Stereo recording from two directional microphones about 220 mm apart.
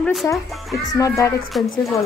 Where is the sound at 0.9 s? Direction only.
15° left (ahead or behind).